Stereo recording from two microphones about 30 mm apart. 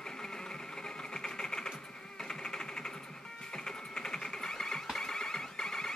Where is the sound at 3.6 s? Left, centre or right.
Left.